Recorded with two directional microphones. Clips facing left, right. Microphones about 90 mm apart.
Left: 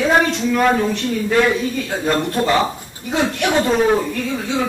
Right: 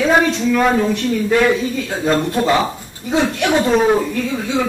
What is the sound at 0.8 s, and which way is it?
A man's voice, 15° right (ahead or behind).